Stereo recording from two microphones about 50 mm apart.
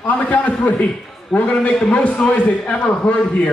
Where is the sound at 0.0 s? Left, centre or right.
Left.